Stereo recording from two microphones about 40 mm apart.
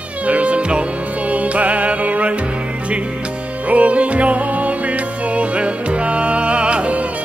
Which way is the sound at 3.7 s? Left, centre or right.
Right.